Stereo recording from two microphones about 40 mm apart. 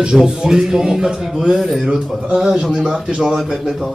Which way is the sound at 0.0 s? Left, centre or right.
Centre.